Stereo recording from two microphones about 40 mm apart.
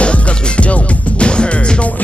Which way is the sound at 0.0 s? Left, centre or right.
Left.